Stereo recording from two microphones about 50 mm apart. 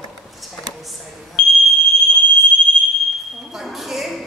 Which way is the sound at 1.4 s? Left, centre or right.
Centre.